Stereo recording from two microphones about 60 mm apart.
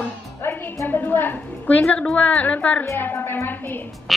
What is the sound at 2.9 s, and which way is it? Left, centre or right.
Speech, left.